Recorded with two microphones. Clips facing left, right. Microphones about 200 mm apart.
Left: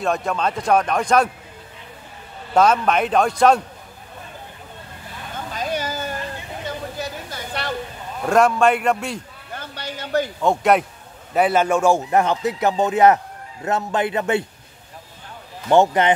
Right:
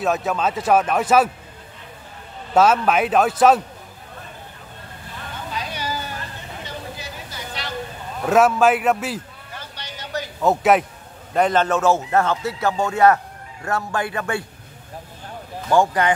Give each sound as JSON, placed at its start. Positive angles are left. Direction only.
{"t": 0.0, "sound": "speech", "side_deg": -5}
{"t": 2.5, "sound": "speech", "side_deg": -5}
{"t": 5.5, "sound": "a sound", "side_deg": 45}
{"t": 8.3, "sound": "speech", "side_deg": -5}
{"t": 9.8, "sound": "a sound", "side_deg": 55}
{"t": 10.4, "sound": "speech", "side_deg": -5}
{"t": 11.3, "sound": "speech", "side_deg": 10}
{"t": 15.7, "sound": "speech", "side_deg": 20}